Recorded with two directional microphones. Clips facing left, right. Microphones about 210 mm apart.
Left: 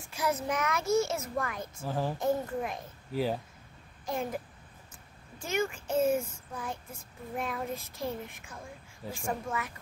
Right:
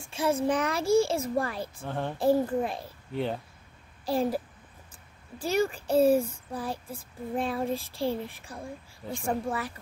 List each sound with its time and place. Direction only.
0.1 s speech: 25° right (ahead or behind)
1.9 s a child's voice: 5° left (ahead or behind)
2.1 s speech: 30° right (ahead or behind)
3.1 s speech: 5° left (ahead or behind)
4.0 s a child's voice: 35° right (ahead or behind)
5.4 s speech: 35° right (ahead or behind)